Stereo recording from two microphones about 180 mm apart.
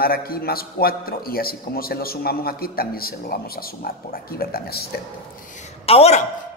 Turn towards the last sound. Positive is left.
turn(degrees=35)  # may be behind; listen again after turning